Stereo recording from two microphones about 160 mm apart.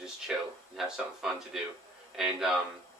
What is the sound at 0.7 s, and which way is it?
Speech, 5° right (ahead or behind).